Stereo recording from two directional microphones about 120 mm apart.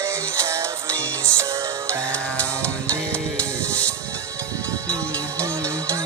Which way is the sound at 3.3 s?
10° left (ahead or behind).